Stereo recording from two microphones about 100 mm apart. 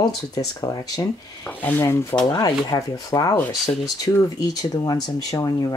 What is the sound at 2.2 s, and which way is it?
Speech, 40° left (ahead or behind).